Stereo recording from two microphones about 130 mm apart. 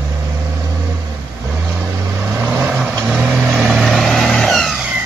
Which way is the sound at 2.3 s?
15° right (ahead or behind).